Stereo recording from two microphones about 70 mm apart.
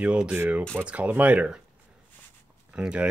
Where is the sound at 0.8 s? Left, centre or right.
Centre.